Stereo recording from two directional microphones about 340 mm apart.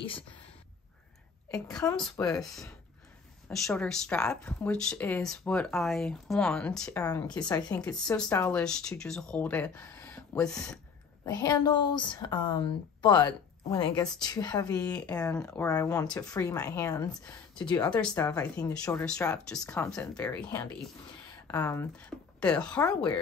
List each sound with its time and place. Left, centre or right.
1.5 s speech: centre